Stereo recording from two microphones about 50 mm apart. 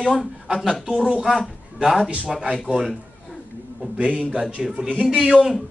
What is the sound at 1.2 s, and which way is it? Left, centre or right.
Speech, centre.